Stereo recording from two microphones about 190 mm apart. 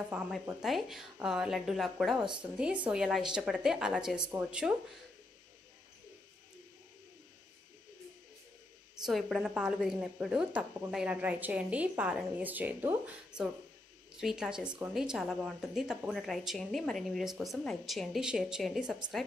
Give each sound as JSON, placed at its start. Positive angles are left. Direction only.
{"t": 0.1, "sound": "speech", "side_deg": -5}
{"t": 9.0, "sound": "speech", "side_deg": 0}
{"t": 14.1, "sound": "speech", "side_deg": -5}